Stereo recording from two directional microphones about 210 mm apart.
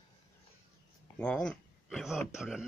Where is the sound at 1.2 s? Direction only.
5° left (ahead or behind).